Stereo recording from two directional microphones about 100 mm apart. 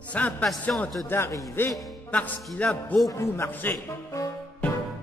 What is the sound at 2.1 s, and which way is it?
Music, 15° left (ahead or behind).